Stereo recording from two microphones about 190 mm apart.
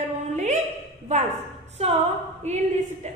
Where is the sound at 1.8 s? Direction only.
35° right (ahead or behind).